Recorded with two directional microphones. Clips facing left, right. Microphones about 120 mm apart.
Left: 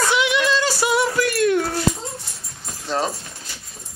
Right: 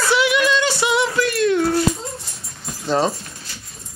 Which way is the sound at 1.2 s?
50° left (ahead or behind).